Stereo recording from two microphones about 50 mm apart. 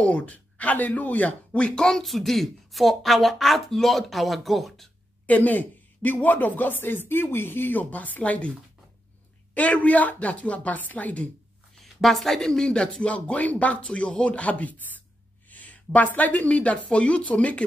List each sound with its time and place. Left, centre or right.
0.0 s speech: left
1.6 s a woman's voice: centre
2.0 s speech: centre
5.2 s speech: left
7.8 s speech: left
9.5 s speech: left
11.8 s a woman's voice: centre; by 17.6 s left